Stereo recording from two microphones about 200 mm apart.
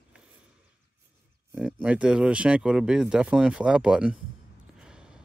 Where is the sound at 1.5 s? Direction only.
5° right (ahead or behind).